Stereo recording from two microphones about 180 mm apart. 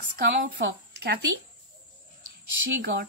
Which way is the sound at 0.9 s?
70° right (ahead or behind).